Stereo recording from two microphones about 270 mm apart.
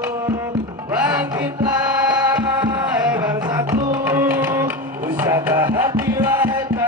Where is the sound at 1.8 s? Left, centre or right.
Centre.